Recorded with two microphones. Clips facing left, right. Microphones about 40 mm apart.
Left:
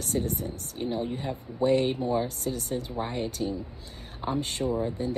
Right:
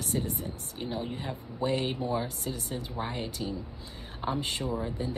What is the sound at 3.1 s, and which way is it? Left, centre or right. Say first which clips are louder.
Speech: left 4 dB; centre.